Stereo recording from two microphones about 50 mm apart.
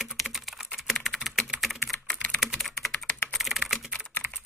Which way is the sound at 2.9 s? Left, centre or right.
Left.